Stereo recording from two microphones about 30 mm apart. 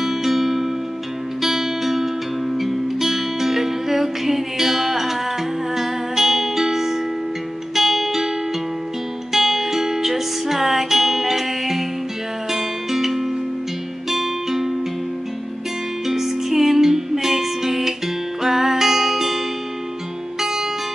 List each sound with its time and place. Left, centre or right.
0.0 s music: centre
9.3 s music: centre
16.1 s music: centre